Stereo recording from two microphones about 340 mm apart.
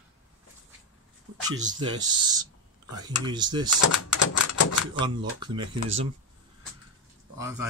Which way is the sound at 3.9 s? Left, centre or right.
Left.